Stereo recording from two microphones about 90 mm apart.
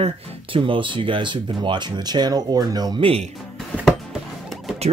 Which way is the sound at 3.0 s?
90° right.